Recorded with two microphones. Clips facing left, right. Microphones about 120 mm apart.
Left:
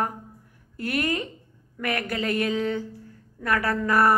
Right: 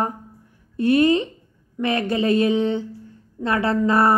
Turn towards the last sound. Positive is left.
turn(degrees=-25)  # may be behind; listen again after turning